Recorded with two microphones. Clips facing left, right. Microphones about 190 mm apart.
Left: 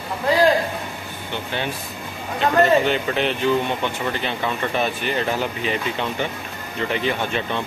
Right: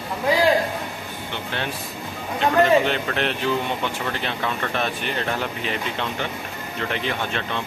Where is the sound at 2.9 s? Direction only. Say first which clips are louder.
Left 3 dB; centre (ahead or behind).